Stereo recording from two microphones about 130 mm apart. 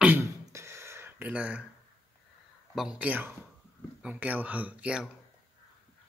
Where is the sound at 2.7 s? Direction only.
5° right (ahead or behind).